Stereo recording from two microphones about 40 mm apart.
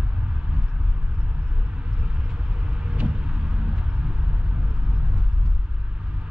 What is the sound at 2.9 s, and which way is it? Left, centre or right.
Vehicle, right.